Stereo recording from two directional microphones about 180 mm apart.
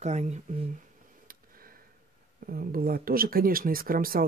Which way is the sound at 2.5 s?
55° right (ahead or behind).